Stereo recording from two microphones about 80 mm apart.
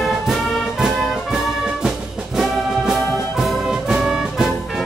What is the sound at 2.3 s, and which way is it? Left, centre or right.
Brass instrument, centre.